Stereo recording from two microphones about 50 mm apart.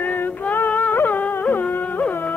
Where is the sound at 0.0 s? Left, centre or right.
Left.